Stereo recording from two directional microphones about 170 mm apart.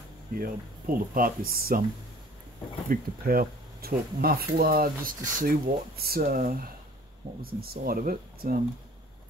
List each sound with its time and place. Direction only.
0.3 s speech: 60° right (ahead or behind)
2.9 s speech: 60° right (ahead or behind)